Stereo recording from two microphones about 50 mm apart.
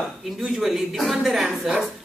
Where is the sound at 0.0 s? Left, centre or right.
Centre.